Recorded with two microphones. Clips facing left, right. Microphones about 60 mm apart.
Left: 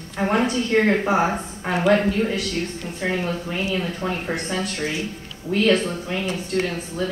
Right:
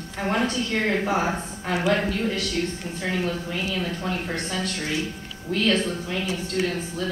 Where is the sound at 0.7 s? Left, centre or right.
Left.